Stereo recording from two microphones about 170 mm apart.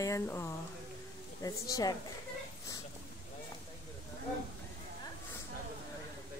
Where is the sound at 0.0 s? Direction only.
15° left (ahead or behind).